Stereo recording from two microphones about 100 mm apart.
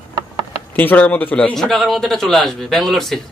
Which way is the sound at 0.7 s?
15° left (ahead or behind).